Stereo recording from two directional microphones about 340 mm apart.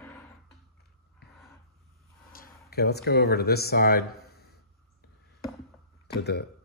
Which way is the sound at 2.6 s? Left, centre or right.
Left.